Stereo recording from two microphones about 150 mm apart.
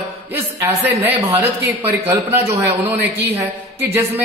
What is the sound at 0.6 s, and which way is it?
A man's voice, 20° right (ahead or behind).